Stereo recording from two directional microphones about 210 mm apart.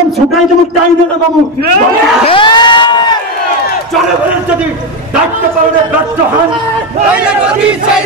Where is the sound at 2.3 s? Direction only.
20° left (ahead or behind).